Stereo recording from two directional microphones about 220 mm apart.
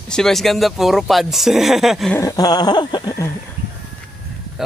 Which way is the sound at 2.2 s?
15° left (ahead or behind).